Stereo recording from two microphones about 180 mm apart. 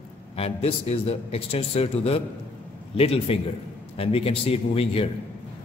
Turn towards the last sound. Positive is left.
turn(degrees=35)  # may be behind; listen again after turning